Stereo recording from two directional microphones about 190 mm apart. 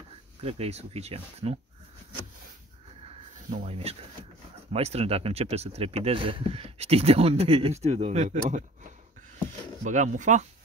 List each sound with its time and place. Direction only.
0.4 s speech: 30° right (ahead or behind)
3.1 s a sound: 30° right (ahead or behind)
4.7 s speech: 30° right (ahead or behind)
9.8 s speech: 40° right (ahead or behind)